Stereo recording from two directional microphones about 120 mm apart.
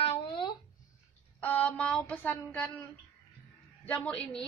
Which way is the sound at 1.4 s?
15° left (ahead or behind).